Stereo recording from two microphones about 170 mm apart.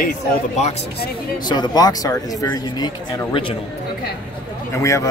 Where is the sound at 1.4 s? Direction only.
25° left (ahead or behind).